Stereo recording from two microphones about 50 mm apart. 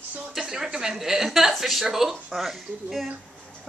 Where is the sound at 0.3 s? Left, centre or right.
Centre.